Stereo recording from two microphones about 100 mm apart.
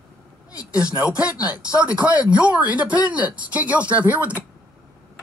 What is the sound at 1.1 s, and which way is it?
Speech, 10° right (ahead or behind).